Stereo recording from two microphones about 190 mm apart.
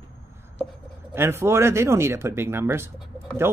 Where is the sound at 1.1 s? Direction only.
15° right (ahead or behind).